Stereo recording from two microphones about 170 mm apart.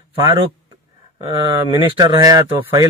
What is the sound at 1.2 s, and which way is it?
A man's voice, 30° right (ahead or behind).